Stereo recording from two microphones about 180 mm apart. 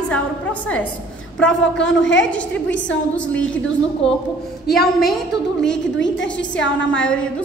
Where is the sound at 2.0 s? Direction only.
90° left.